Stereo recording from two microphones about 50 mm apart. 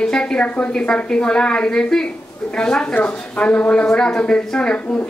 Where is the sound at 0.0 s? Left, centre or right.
Centre.